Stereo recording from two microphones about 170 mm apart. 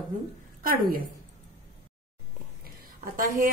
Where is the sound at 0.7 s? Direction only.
60° right (ahead or behind).